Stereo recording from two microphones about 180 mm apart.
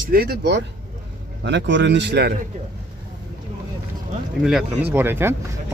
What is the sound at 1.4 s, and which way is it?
Speech, 85° right.